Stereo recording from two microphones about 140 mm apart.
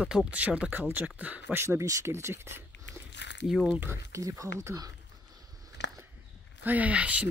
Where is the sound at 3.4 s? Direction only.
5° right (ahead or behind).